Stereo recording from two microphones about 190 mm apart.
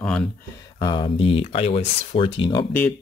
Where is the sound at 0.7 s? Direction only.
25° left (ahead or behind).